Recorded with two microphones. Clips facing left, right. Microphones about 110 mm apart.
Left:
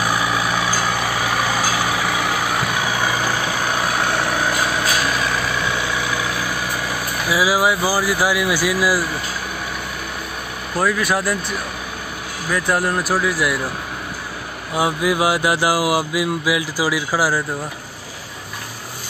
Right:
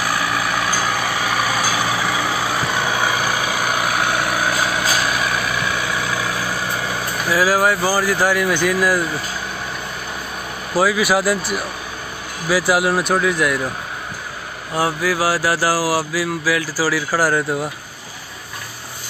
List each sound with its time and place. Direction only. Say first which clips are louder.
0.0 s vehicle: left 1 dB; 15° left (ahead or behind)
0.6 s vehicle: even; 5° left (ahead or behind)
1.6 s vehicle: even; 15° right (ahead or behind)
7.2 s speech: right 1 dB; 10° left (ahead or behind)
10.7 s speech: right 3 dB; centre (ahead or behind)
14.7 s mantra: left 1 dB; 15° left (ahead or behind)